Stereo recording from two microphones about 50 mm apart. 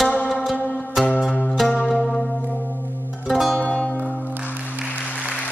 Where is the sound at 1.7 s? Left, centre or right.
Centre.